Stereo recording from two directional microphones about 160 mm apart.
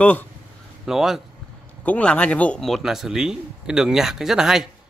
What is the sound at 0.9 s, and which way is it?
Speech, centre (ahead or behind).